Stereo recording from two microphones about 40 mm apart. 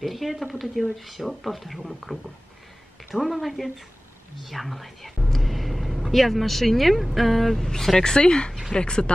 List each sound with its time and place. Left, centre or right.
0.0 s speech: centre
8.1 s speech: left